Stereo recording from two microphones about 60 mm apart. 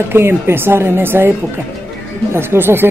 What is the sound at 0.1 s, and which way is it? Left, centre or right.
Speech, right.